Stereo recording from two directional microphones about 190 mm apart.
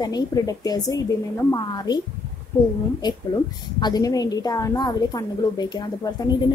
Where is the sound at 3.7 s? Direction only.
20° left (ahead or behind).